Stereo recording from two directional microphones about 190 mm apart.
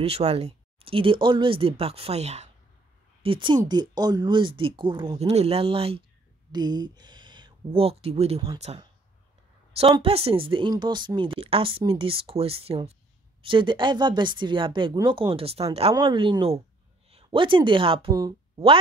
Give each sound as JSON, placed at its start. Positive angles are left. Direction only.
{"t": 0.0, "sound": "speech", "side_deg": -30}